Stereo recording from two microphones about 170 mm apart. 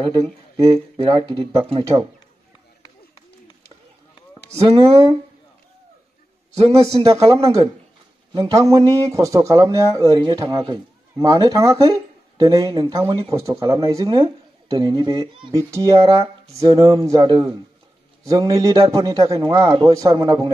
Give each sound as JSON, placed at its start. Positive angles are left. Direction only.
{"t": 0.9, "sound": "speech", "side_deg": -35}
{"t": 4.6, "sound": "speech", "side_deg": -35}
{"t": 6.5, "sound": "speech", "side_deg": -35}
{"t": 7.2, "sound": "a man's voice", "side_deg": -20}